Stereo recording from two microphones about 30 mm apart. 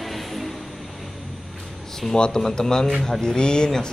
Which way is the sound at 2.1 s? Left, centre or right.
Left.